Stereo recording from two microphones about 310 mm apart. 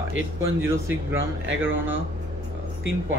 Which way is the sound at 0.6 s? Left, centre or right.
Centre.